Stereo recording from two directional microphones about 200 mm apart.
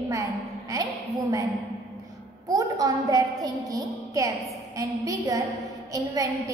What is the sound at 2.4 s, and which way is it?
A woman's voice, 20° right (ahead or behind).